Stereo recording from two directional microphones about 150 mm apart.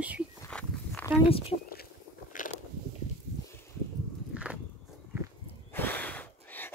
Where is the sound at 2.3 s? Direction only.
60° left (ahead or behind).